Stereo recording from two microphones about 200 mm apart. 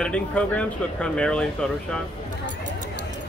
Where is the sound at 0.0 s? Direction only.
5° left (ahead or behind).